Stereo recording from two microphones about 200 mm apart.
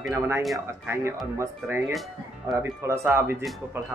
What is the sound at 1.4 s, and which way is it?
Speech, 10° right (ahead or behind).